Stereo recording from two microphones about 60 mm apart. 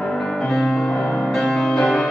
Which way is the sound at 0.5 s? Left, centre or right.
Centre.